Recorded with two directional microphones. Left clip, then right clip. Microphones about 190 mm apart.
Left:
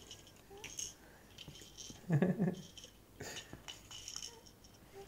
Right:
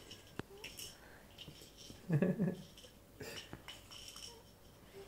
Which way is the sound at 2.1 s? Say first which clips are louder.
Left 1 dB; 40° left (ahead or behind).